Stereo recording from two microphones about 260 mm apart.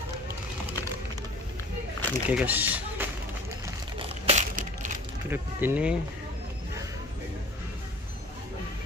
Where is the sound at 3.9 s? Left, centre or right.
Right.